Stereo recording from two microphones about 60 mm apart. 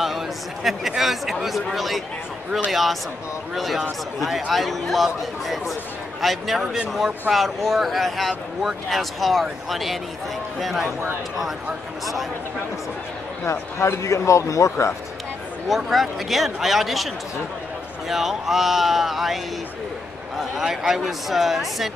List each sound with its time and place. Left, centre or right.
0.7 s speech: centre
13.5 s speech: left
15.7 s speech: centre